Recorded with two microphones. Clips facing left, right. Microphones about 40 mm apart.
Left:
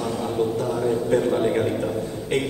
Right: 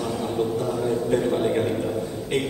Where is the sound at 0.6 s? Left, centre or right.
Centre.